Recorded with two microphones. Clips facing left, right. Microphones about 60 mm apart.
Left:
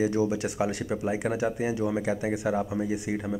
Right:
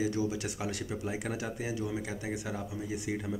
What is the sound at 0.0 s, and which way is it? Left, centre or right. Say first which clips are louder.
Speech: left 6 dB; left.